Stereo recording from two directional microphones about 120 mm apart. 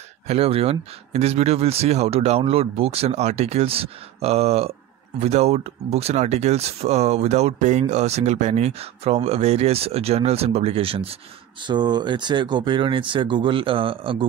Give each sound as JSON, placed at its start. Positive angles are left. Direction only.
{"t": 0.3, "sound": "speech", "side_deg": -55}
{"t": 11.6, "sound": "speech", "side_deg": -40}